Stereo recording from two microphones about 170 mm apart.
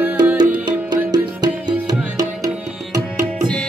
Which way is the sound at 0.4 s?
25° right (ahead or behind).